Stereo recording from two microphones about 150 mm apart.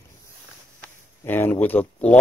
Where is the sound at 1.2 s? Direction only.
15° left (ahead or behind).